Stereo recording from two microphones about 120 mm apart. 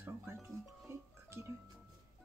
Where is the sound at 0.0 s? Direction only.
20° right (ahead or behind).